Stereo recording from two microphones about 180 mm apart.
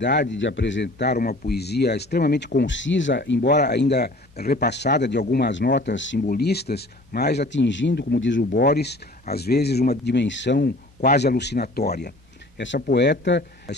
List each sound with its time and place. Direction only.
0.3 s speech: 90° left
6.2 s speech: 60° left (ahead or behind); by 8.5 s 80° left
8.5 s speech: 60° left (ahead or behind)
10.0 s speech: 80° left
11.0 s speech: 60° left (ahead or behind)
12.5 s speech: 75° left (ahead or behind)